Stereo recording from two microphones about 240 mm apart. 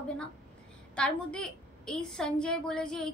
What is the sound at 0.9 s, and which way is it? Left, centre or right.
A woman's voice, centre.